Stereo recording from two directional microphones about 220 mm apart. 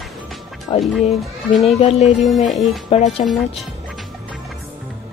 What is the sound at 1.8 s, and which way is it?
Speech, 25° left (ahead or behind).